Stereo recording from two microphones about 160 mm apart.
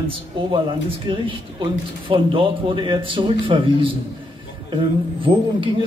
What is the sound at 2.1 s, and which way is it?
A man's voice, 30° right (ahead or behind).